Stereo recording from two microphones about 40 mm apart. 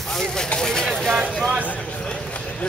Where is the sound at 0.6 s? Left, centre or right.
Centre.